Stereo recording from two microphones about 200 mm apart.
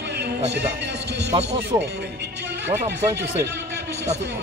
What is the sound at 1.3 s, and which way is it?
Speech, 30° right (ahead or behind).